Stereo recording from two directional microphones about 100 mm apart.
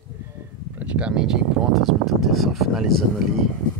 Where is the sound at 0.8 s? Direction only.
10° right (ahead or behind).